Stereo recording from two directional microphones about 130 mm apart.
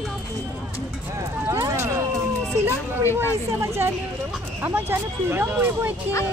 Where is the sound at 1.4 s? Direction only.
20° right (ahead or behind).